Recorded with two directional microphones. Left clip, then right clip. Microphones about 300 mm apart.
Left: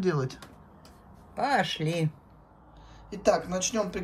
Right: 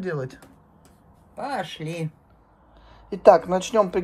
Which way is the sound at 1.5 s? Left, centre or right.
Left.